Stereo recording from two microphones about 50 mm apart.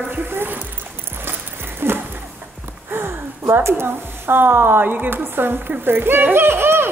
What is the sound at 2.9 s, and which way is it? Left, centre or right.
A woman's voice, right.